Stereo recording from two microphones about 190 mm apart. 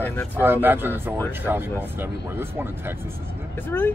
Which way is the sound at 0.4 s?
10° right (ahead or behind).